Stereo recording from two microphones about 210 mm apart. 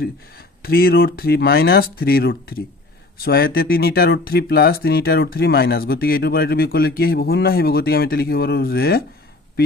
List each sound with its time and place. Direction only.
0.6 s speech: 45° left (ahead or behind)